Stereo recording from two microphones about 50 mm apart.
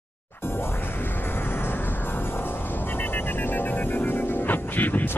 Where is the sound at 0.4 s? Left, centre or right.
Left.